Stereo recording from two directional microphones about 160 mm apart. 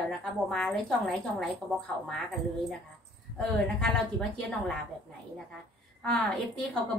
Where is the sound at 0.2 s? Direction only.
Centre (ahead or behind).